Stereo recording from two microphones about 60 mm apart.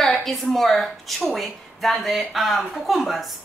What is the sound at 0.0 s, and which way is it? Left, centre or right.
A woman's voice, centre.